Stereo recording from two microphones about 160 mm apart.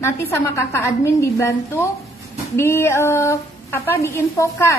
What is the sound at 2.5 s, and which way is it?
A woman's voice, 15° left (ahead or behind).